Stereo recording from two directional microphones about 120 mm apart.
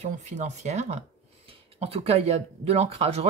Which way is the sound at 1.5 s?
55° right (ahead or behind).